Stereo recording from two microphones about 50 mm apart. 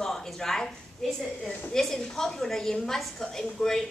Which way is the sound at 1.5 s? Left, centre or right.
Left.